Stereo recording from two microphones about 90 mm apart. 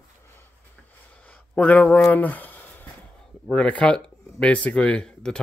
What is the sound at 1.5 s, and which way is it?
Speech, 15° left (ahead or behind).